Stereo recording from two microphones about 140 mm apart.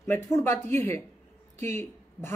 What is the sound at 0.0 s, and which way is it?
Speech, 20° left (ahead or behind).